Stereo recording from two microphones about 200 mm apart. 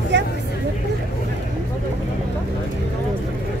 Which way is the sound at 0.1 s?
60° right (ahead or behind).